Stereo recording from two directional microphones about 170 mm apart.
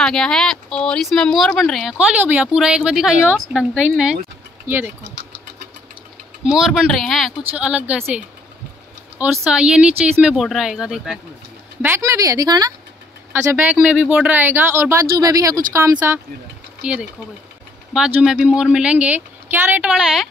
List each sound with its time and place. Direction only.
0.0 s speech: 5° left (ahead or behind); by 4.9 s 10° right (ahead or behind)
6.4 s speech: 5° right (ahead or behind)
9.2 s speech: 5° right (ahead or behind)
11.8 s speech: 15° right (ahead or behind)
13.3 s speech: 10° right (ahead or behind)